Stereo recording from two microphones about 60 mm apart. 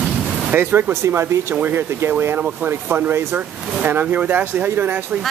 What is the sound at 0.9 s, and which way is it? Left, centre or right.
Speech, right.